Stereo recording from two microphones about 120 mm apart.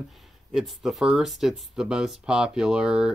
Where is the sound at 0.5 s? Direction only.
Centre (ahead or behind).